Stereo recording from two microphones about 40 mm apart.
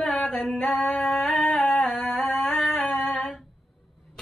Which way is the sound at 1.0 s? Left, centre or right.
Left.